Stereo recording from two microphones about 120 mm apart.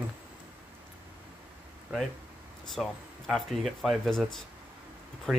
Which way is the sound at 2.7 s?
Centre (ahead or behind).